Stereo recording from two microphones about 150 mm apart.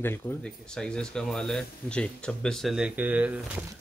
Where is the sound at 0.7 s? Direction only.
5° left (ahead or behind).